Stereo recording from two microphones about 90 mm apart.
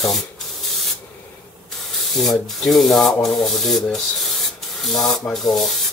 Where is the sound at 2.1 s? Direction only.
Centre (ahead or behind).